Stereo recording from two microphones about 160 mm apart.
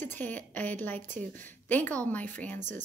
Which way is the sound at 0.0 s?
10° left (ahead or behind).